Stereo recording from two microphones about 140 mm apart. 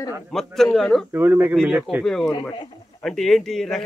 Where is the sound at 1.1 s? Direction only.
15° right (ahead or behind).